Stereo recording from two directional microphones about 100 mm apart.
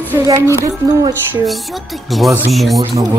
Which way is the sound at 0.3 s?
30° right (ahead or behind).